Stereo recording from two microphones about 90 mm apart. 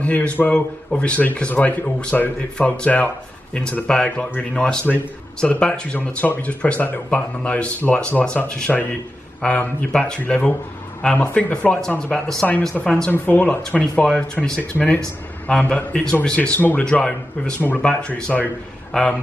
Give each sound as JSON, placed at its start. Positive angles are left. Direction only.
{"t": 0.0, "sound": "speech", "side_deg": 15}